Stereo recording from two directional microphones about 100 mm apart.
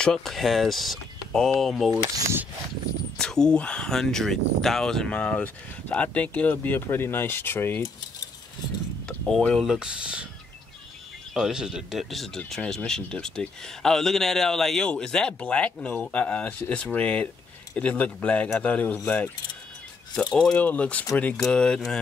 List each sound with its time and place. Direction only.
0.0 s speech: 5° left (ahead or behind)
3.2 s speech: 5° left (ahead or behind)
9.0 s speech: 10° left (ahead or behind)
9.6 s speech: 5° right (ahead or behind)
11.3 s speech: 5° right (ahead or behind); by 19.3 s 15° left (ahead or behind)
20.3 s speech: 10° left (ahead or behind)